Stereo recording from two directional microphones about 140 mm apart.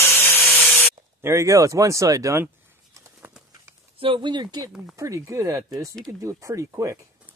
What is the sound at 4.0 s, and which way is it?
Speech, 35° right (ahead or behind).